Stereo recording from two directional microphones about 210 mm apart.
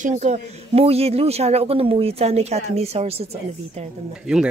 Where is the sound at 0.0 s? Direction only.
35° right (ahead or behind).